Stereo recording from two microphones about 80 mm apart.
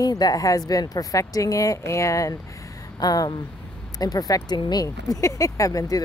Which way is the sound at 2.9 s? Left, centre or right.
Left.